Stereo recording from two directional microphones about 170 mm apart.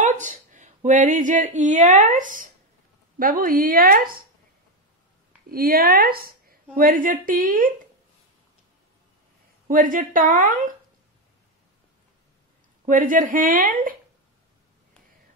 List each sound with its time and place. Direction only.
0.0 s a woman's voice: 45° right (ahead or behind)
5.5 s a woman's voice: 60° right (ahead or behind)
9.7 s a woman's voice: 50° right (ahead or behind)
12.8 s a woman's voice: 55° right (ahead or behind)